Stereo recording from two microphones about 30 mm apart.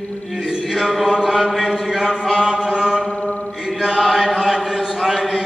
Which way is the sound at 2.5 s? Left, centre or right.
Centre.